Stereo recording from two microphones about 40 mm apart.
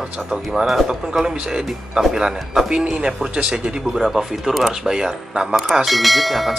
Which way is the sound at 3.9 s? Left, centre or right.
Centre.